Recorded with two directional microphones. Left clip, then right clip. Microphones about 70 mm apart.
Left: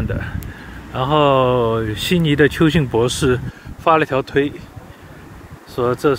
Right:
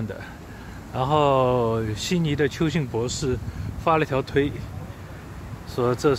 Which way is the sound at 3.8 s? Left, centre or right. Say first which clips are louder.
Left 7 dB; left.